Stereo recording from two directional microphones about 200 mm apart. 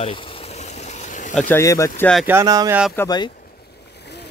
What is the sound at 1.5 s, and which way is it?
Speech, 15° left (ahead or behind).